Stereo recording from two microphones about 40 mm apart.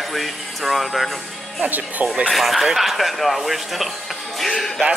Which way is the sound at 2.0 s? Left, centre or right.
Right.